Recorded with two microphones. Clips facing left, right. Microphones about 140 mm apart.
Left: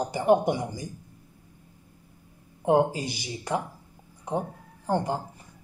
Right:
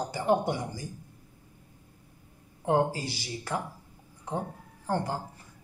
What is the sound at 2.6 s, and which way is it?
Speech, 15° left (ahead or behind).